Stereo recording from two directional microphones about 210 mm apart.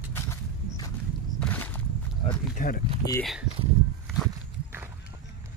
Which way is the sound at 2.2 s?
40° left (ahead or behind).